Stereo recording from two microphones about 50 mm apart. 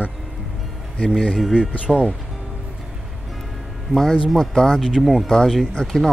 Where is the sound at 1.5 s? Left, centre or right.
Centre.